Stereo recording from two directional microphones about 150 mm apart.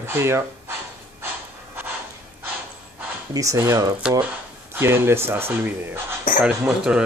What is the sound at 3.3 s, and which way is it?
Speech, 20° right (ahead or behind).